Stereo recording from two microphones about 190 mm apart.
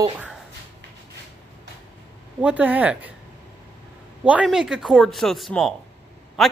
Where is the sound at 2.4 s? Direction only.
10° right (ahead or behind).